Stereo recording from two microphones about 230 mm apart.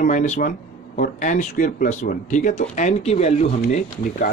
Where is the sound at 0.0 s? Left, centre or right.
Left.